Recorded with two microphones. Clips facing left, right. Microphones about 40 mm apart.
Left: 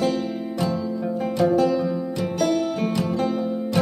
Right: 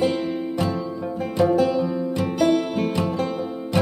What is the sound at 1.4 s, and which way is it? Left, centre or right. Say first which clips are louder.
Music: right 1 dB; centre.